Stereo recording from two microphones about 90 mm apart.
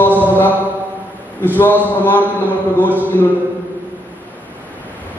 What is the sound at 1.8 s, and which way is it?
Speech, 20° left (ahead or behind).